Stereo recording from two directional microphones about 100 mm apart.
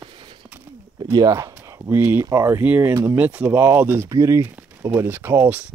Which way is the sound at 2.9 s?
30° right (ahead or behind).